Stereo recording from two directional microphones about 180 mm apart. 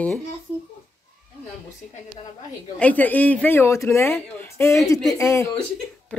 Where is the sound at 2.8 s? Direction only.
10° left (ahead or behind).